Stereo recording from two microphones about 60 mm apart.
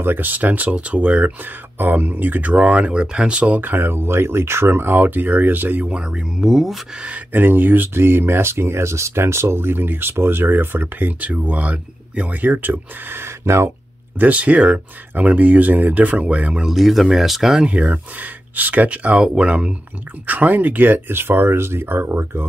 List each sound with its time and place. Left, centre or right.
0.0 s speech: right
3.7 s speech: right; by 6.8 s centre
7.0 s speech: centre
7.3 s speech: right
14.1 s speech: right
16.6 s speech: centre
17.6 s speech: right